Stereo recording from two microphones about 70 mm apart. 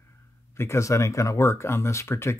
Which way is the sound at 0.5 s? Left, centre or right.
Left.